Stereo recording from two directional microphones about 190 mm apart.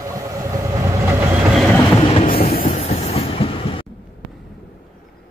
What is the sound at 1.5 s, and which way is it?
Train, centre (ahead or behind).